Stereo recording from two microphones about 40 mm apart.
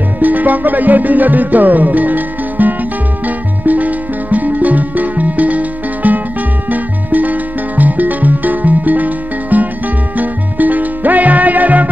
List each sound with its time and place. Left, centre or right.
0.2 s music: right